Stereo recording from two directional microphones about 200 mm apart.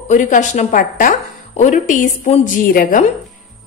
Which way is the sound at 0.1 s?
40° left (ahead or behind).